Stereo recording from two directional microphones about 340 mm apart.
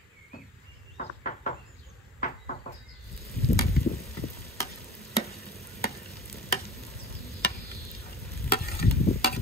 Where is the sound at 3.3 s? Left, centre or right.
Left.